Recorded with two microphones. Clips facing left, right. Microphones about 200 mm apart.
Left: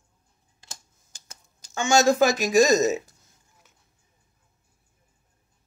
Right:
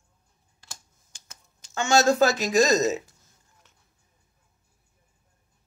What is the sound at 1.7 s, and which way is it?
Speech, 15° left (ahead or behind).